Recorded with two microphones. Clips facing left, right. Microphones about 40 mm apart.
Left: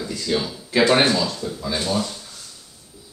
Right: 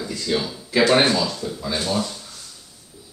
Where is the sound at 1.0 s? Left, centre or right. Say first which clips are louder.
Even; centre.